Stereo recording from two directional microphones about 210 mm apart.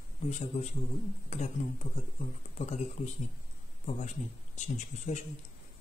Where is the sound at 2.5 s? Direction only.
35° left (ahead or behind).